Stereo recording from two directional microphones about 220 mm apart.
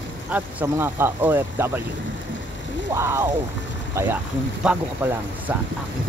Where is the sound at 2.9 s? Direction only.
10° right (ahead or behind).